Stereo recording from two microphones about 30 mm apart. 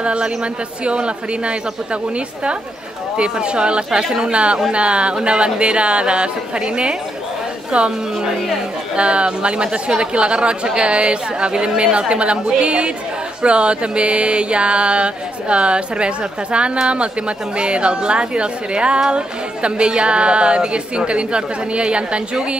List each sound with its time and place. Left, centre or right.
0.0 s speech: right
3.2 s speech: right